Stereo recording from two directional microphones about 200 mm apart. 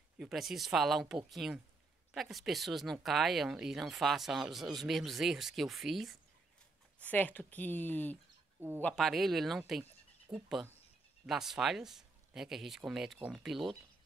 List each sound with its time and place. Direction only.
0.2 s speech: centre (ahead or behind)
8.5 s speech: 10° right (ahead or behind)
8.8 s speech: centre (ahead or behind)
10.3 s speech: 15° right (ahead or behind)
11.2 s speech: centre (ahead or behind)